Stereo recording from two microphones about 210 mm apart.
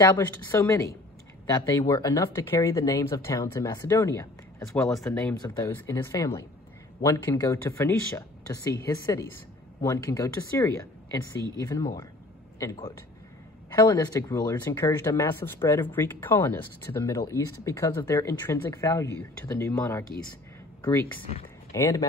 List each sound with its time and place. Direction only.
0.0 s speech: 15° left (ahead or behind)